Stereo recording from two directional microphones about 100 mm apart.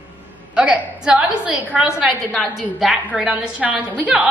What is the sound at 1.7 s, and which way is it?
A woman's voice, 10° right (ahead or behind).